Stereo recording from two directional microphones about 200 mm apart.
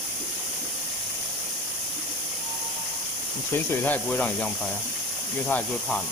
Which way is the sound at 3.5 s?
10° left (ahead or behind).